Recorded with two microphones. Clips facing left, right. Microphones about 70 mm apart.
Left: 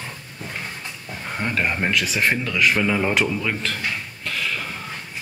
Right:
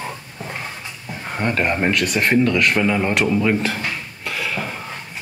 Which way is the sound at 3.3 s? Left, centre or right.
Centre.